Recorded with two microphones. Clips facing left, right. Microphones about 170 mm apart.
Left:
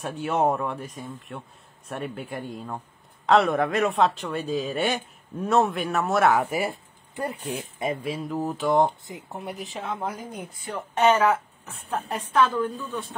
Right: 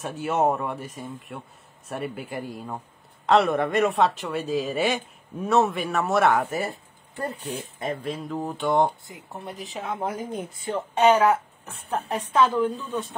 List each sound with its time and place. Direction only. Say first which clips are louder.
0.0 s speech: even; centre (ahead or behind)
6.4 s speech: left 1 dB; 10° left (ahead or behind)
9.0 s speech: left 3 dB; 20° left (ahead or behind)
9.5 s speech: even; centre (ahead or behind)
9.8 s speech: right 3 dB; 20° right (ahead or behind)
11.0 s a woman's voice: right 1 dB; 10° right (ahead or behind)